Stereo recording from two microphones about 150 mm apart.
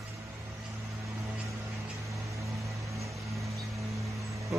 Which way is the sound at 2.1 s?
20° right (ahead or behind).